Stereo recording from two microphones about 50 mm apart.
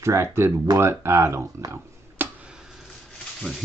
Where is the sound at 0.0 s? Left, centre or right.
Right.